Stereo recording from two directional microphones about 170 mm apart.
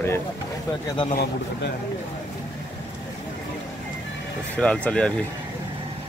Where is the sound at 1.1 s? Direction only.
75° left (ahead or behind).